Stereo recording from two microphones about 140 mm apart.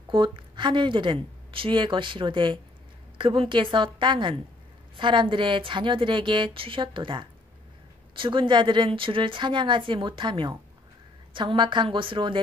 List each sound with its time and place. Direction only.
0.1 s speech: 35° right (ahead or behind)